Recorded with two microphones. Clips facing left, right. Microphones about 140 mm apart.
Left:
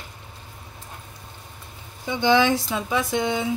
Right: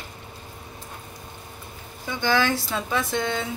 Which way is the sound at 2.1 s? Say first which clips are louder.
Left 4 dB; 20° left (ahead or behind).